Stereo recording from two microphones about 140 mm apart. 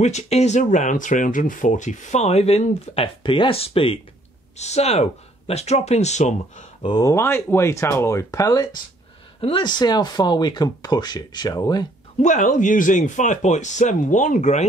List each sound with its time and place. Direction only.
0.0 s speech: 50° left (ahead or behind)
4.6 s speech: 50° left (ahead or behind)
6.8 s speech: 30° left (ahead or behind)
7.1 s speech: 20° left (ahead or behind)
9.4 s speech: 35° left (ahead or behind)
12.2 s speech: 60° left (ahead or behind)